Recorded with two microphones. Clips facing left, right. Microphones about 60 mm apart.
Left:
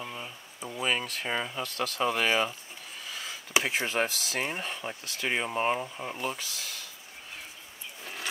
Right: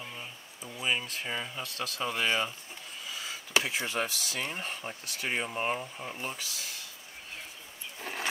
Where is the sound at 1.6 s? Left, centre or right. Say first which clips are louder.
Left 5 dB; left.